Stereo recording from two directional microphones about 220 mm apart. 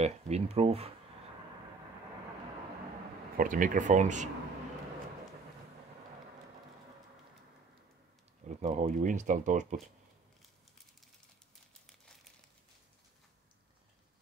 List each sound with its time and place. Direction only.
0.0 s speech: 30° right (ahead or behind)
3.3 s speech: 40° right (ahead or behind)
8.5 s speech: 30° right (ahead or behind)